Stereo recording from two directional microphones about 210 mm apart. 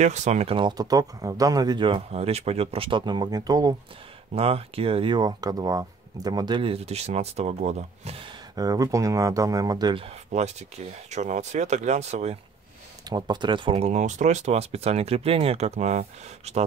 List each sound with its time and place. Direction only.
0.0 s speech: 35° right (ahead or behind); by 3.7 s 20° right (ahead or behind)
4.4 s speech: 30° right (ahead or behind)
8.5 s speech: 15° right (ahead or behind)
13.1 s speech: 20° right (ahead or behind)